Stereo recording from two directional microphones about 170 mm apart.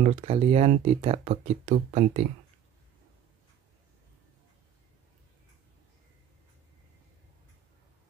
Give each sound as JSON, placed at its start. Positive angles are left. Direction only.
{"t": 0.0, "sound": "speech", "side_deg": -35}